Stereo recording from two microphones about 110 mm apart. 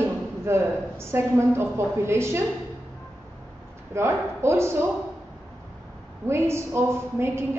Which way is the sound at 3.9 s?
25° right (ahead or behind).